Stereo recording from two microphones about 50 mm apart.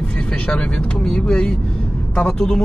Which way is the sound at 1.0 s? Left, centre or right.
Centre.